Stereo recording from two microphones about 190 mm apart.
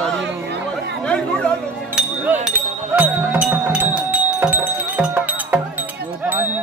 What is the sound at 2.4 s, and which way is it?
Music, 10° right (ahead or behind).